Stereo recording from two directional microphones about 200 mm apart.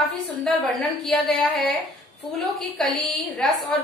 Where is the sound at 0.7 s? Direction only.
Centre (ahead or behind).